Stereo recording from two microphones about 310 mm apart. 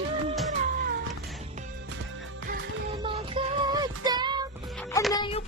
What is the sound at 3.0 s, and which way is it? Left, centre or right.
Music, centre.